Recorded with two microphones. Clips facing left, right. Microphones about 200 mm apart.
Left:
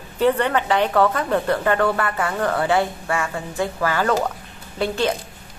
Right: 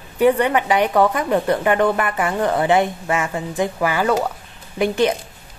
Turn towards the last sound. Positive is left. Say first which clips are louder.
# right 4 dB
turn(degrees=-15)  # may be behind; listen again after turning